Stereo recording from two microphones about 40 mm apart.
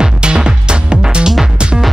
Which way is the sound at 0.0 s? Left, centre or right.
Right.